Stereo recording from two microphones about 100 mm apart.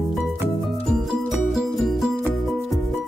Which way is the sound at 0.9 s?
Centre (ahead or behind).